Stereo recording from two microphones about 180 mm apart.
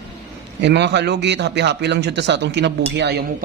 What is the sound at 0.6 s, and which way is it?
Speech, 70° right (ahead or behind).